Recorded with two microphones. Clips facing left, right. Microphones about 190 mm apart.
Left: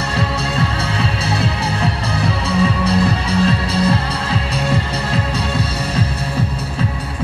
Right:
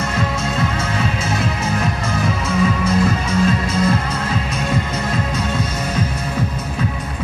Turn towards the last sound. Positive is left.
turn(degrees=35)  # may be behind; listen again after turning